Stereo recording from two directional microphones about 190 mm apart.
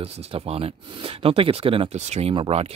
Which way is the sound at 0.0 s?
30° right (ahead or behind).